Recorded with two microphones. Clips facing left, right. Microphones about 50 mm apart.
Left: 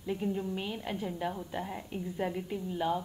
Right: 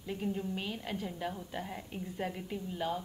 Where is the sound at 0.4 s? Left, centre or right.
Centre.